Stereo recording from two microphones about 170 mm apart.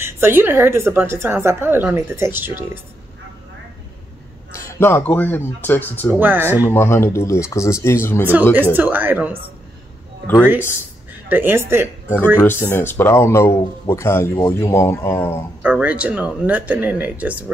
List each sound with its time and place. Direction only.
0.0 s a woman's voice: 15° right (ahead or behind)
4.5 s a man's voice: 15° left (ahead or behind)
6.1 s a woman's voice: 10° right (ahead or behind)
6.6 s speech: 15° left (ahead or behind)
8.2 s a woman's voice: 10° right (ahead or behind)
10.2 s speech: 10° left (ahead or behind)
11.2 s a woman's voice: 10° right (ahead or behind)
12.4 s speech: 15° left (ahead or behind)
15.6 s a woman's voice: 10° right (ahead or behind)